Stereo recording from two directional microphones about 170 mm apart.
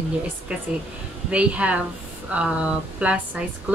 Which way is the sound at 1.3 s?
5° right (ahead or behind).